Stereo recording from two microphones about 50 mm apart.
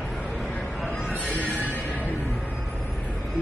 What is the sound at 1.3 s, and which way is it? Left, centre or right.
Music, left.